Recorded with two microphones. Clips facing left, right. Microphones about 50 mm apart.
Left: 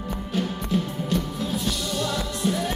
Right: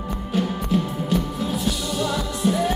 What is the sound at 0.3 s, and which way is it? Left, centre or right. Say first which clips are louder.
Music: right 4 dB; centre.